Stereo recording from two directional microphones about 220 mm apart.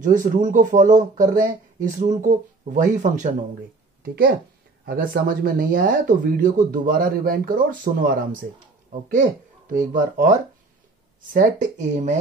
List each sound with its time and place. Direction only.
0.0 s speech: 35° right (ahead or behind)
9.7 s speech: 35° right (ahead or behind)
11.3 s speech: 35° right (ahead or behind)